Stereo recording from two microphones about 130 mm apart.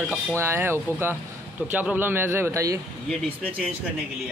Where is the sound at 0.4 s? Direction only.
20° right (ahead or behind).